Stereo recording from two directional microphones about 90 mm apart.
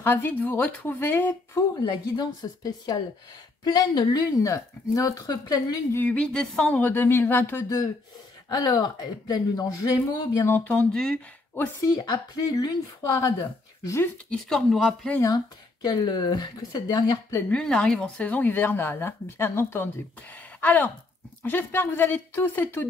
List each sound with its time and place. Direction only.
0.0 s speech: 25° left (ahead or behind)
2.1 s a woman's voice: 50° left (ahead or behind)
5.9 s speech: 20° left (ahead or behind)
6.1 s speech: 10° left (ahead or behind)
8.5 s a woman's voice: 45° left (ahead or behind)
10.5 s speech: 20° left (ahead or behind)
11.8 s a woman's voice: 50° left (ahead or behind)
14.3 s speech: 5° left (ahead or behind)
15.3 s a woman's voice: 50° left (ahead or behind)
17.5 s speech: 10° left (ahead or behind)